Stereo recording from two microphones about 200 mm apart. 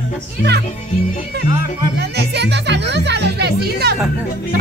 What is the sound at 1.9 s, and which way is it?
Music, 55° right (ahead or behind).